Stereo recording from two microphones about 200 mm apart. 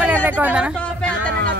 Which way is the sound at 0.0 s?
10° right (ahead or behind).